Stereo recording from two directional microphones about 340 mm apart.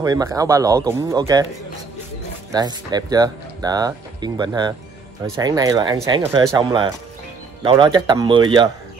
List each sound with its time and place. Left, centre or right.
0.0 s speech: centre
2.5 s speech: centre